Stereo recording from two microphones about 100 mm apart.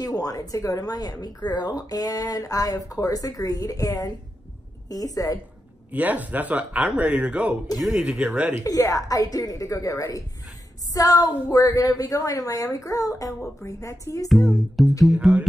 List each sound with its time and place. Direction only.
0.0 s speech: 35° left (ahead or behind)
5.9 s speech: 15° right (ahead or behind)
8.6 s speech: 35° left (ahead or behind)
14.3 s music: centre (ahead or behind)